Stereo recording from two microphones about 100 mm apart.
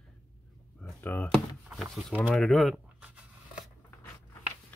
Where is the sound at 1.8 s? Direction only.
Centre (ahead or behind).